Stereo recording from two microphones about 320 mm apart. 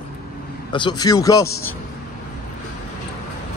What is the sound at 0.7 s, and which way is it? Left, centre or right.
A man's voice, centre.